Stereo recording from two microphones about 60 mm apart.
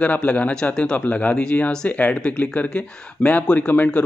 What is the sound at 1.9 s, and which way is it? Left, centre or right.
Speech, left.